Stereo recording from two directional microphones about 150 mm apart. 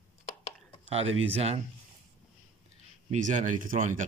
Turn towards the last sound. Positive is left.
turn(degrees=-55)  # may be behind; listen again after turning